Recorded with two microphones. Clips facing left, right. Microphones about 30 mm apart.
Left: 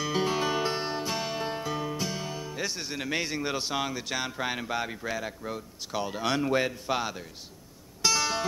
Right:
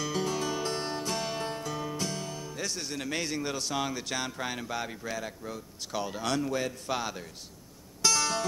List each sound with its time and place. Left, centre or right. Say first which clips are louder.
0.0 s music: left 3 dB; left
3.8 s speech: left 1 dB; centre
6.3 s a man's voice: left 4 dB; left
6.7 s speech: left 3 dB; centre
8.0 s music: left 1 dB; centre